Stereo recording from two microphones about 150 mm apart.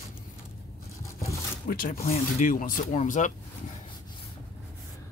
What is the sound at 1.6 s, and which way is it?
Speech, 75° left (ahead or behind).